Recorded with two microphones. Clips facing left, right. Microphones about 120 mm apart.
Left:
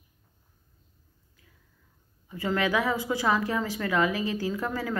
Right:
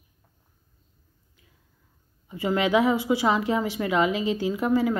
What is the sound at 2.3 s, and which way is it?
Speech, 20° right (ahead or behind).